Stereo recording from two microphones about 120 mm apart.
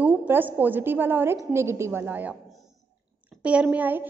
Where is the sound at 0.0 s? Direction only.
15° right (ahead or behind).